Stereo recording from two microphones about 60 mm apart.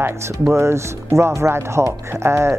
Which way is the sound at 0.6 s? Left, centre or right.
Right.